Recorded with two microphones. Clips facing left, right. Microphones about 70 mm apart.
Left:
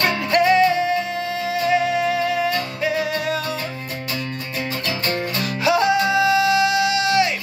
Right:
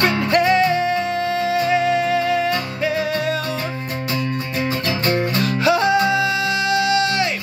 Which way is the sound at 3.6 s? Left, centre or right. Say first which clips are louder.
Right 3 dB; right.